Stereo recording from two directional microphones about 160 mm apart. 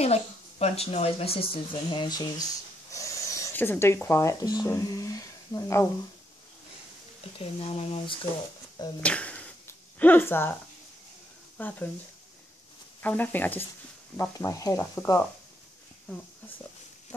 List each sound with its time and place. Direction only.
0.0 s a woman's voice: 40° left (ahead or behind); by 5.9 s 20° left (ahead or behind)
7.3 s a woman's voice: 35° left (ahead or behind)
9.0 s a sound: 10° left (ahead or behind)
11.5 s speech: 10° left (ahead or behind)
13.0 s stir: 10° left (ahead or behind)